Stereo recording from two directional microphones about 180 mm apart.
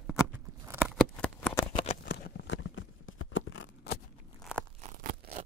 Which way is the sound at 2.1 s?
65° left (ahead or behind).